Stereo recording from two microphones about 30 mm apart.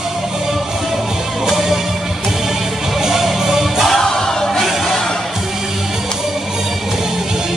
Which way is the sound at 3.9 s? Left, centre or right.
Centre.